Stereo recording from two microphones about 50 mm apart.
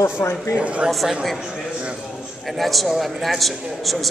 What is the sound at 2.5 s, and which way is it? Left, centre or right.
Speech, centre.